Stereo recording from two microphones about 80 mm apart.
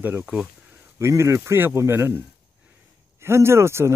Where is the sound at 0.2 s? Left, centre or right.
Centre.